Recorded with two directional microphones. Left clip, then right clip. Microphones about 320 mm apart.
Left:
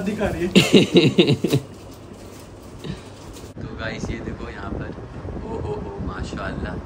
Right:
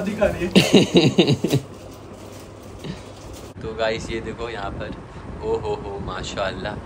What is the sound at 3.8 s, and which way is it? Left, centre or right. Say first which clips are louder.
Speech: right 7 dB; centre.